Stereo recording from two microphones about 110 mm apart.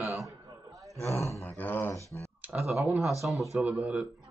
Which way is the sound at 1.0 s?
25° left (ahead or behind).